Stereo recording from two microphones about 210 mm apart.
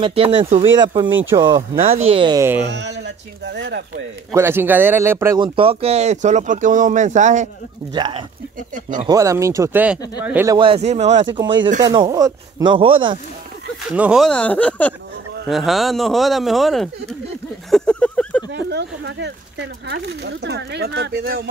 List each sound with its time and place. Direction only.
0.0 s speech: 25° right (ahead or behind)
1.8 s speech: 40° right (ahead or behind)
2.0 s speech: 20° right (ahead or behind)
2.7 s speech: 55° right (ahead or behind)
4.3 s speech: 10° right (ahead or behind)
5.4 s speech: 25° right (ahead or behind)
7.9 s speech: 20° right (ahead or behind)
10.6 s speech: 30° right (ahead or behind)
13.8 s speech: 5° right (ahead or behind)
17.6 s a sound: 5° left (ahead or behind)
18.5 s speech: 55° right (ahead or behind)